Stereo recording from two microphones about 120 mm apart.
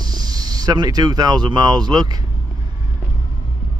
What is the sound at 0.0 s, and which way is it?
Speech, 35° right (ahead or behind).